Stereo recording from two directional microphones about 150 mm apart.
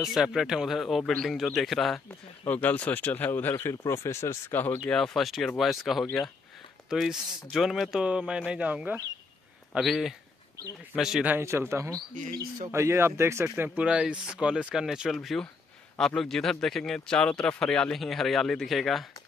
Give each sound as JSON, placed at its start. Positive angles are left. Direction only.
{"t": 0.0, "sound": "speech", "side_deg": 0}
{"t": 2.0, "sound": "speech", "side_deg": 10}
{"t": 11.3, "sound": "speech", "side_deg": -15}